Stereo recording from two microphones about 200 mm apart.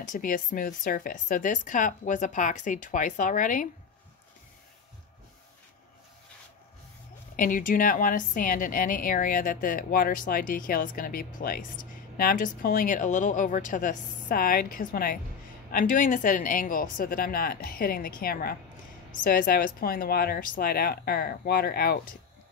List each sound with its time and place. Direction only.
0.0 s speech: 40° left (ahead or behind)
7.3 s a woman's voice: 45° left (ahead or behind)